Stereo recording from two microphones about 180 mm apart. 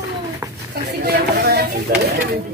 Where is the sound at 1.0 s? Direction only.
60° right (ahead or behind).